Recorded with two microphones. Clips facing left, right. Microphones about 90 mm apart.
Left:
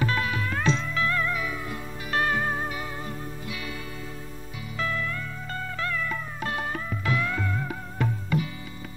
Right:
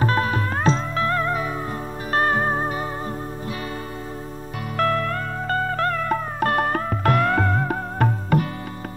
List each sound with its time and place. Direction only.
0.0 s music: 40° right (ahead or behind)
4.7 s music: 60° right (ahead or behind)